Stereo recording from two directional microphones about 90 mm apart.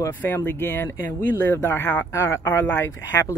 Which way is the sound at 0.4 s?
25° left (ahead or behind).